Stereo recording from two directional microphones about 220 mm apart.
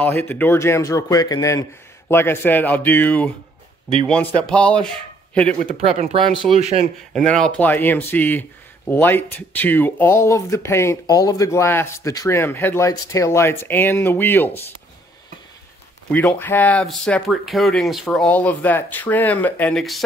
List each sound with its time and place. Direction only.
0.0 s speech: 10° left (ahead or behind)
5.6 s speech: 25° right (ahead or behind)
7.2 s speech: 5° left (ahead or behind)
16.1 s speech: 5° left (ahead or behind)